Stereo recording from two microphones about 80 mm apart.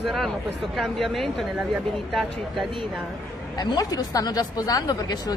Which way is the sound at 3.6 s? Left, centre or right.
Left.